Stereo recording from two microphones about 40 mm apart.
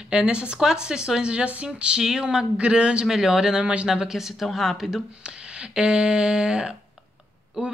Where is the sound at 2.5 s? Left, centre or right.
Right.